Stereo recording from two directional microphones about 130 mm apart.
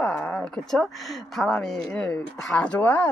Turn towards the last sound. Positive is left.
turn(degrees=10)  # may be behind; listen again after turning